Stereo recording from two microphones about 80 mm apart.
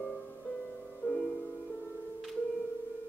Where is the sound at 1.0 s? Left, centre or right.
Left.